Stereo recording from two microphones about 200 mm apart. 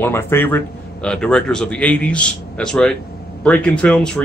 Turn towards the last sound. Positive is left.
turn(degrees=5)  # may be behind; listen again after turning